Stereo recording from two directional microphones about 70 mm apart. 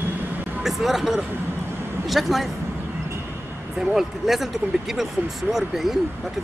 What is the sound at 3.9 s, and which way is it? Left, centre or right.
Speech, centre.